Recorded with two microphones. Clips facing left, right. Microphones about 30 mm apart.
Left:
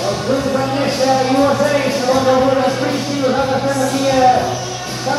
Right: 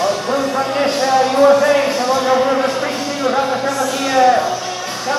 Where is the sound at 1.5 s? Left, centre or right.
Right.